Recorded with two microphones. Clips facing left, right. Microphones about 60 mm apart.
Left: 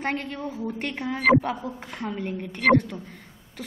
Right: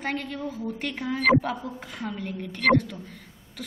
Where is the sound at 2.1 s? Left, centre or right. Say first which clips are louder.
Left 3 dB; centre.